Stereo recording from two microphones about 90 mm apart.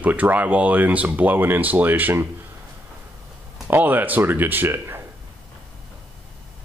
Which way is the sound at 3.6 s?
20° right (ahead or behind).